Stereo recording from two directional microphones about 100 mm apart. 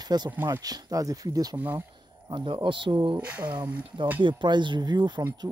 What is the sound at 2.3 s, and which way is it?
Speech, 55° right (ahead or behind).